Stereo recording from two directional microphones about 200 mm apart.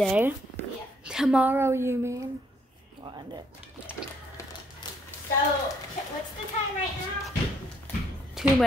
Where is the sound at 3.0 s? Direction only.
25° right (ahead or behind).